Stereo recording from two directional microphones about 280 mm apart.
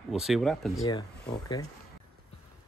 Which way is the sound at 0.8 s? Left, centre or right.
Centre.